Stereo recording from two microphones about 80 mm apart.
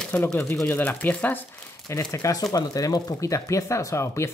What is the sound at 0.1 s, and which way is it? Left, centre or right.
Speech, left.